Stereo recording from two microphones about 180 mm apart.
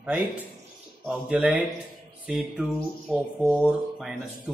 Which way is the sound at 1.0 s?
5° right (ahead or behind).